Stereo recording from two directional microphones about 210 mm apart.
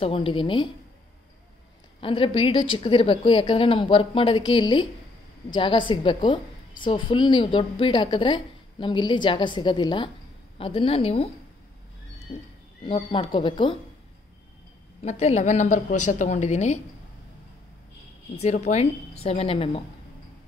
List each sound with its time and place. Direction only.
0.0 s a woman's voice: 25° left (ahead or behind)
2.0 s a woman's voice: 25° left (ahead or behind)
12.3 s a woman's voice: 25° left (ahead or behind)
15.0 s speech: 30° left (ahead or behind)
18.4 s a woman's voice: 30° left (ahead or behind)